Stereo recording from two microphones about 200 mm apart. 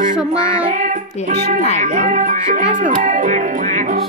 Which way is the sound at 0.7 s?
40° right (ahead or behind).